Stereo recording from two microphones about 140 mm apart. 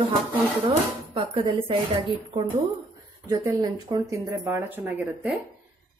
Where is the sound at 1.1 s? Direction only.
40° right (ahead or behind).